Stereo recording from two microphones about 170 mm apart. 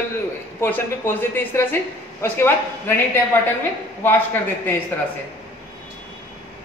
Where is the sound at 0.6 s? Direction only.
10° left (ahead or behind).